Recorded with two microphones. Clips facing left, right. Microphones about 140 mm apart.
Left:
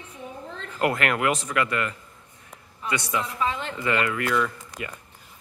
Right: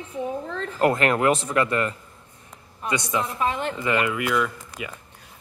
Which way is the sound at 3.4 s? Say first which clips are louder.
Right 3 dB; 50° right (ahead or behind).